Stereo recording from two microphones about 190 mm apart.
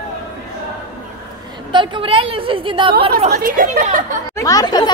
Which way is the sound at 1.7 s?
25° right (ahead or behind).